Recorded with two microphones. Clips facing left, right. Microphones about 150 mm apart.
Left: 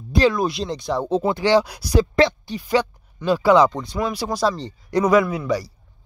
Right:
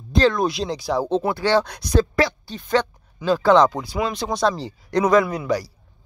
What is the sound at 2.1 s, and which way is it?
Speech, 25° left (ahead or behind).